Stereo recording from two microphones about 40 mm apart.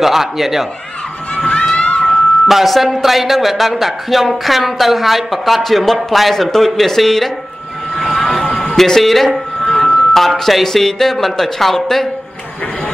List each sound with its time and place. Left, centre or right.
0.0 s speech: centre
1.3 s crowd: left
2.4 s speech: centre
7.9 s vehicle: centre
8.5 s a sound: centre
10.1 s speech: centre